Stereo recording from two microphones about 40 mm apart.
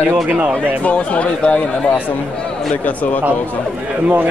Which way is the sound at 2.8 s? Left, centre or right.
Left.